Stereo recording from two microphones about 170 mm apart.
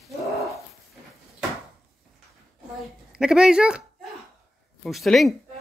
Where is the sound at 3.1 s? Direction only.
5° right (ahead or behind).